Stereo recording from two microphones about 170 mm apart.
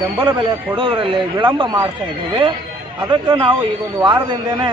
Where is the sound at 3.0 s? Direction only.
25° right (ahead or behind).